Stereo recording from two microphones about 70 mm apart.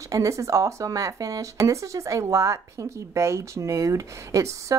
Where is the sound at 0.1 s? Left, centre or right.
Right.